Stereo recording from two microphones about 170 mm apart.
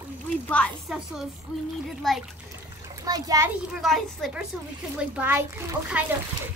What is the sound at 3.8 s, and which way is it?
Speech, centre (ahead or behind).